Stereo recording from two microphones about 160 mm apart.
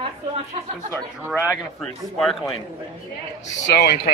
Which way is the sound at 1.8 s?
Centre (ahead or behind).